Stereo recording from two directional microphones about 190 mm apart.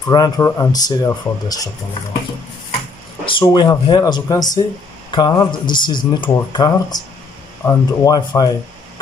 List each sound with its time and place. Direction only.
0.1 s speech: 20° left (ahead or behind)
3.3 s speech: 25° left (ahead or behind)